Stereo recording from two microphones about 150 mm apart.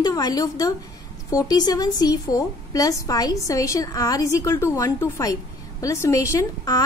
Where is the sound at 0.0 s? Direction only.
25° left (ahead or behind).